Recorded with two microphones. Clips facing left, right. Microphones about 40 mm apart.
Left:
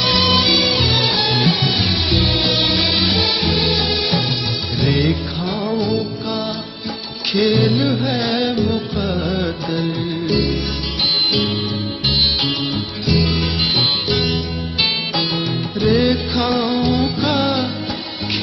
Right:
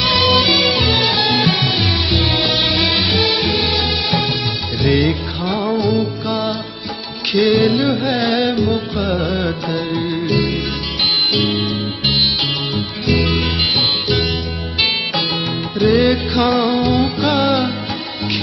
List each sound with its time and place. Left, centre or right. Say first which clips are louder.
0.0 s music: right 2 dB; centre
2.6 s music: right 1 dB; centre
4.8 s music: right 3 dB; centre
7.4 s music: right 2 dB; centre
8.0 s carnatic music: right 2 dB; centre
13.0 s music: right 1 dB; right
15.7 s music: right 3 dB; centre